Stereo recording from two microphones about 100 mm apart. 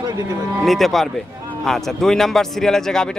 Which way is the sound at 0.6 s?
Centre (ahead or behind).